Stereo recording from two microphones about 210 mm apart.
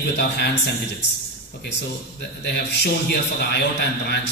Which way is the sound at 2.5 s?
50° left (ahead or behind).